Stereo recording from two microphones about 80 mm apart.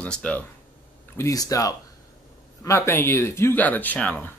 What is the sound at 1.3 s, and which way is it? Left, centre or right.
Speech, left.